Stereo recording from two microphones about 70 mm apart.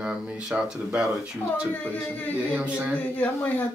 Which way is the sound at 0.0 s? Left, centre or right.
Centre.